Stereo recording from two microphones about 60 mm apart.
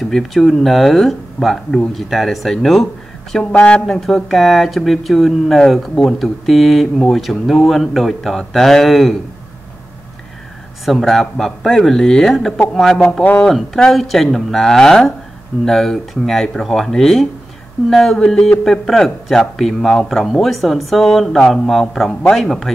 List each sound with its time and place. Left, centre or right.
0.0 s speech: centre
3.5 s speech: centre
3.8 s speech: centre
10.9 s speech: centre